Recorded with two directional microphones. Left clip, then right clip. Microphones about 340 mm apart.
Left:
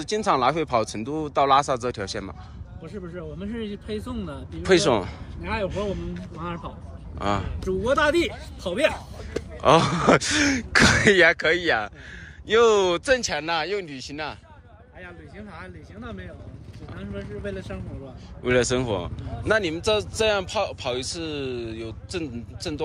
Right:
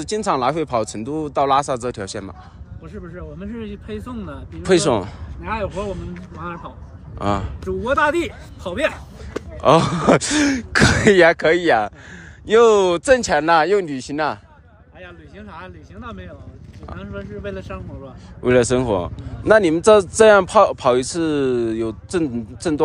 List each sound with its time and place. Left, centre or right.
0.0 s speech: centre
4.6 s speech: centre
6.1 s speech: centre
9.3 s speech: centre
16.9 s speech: centre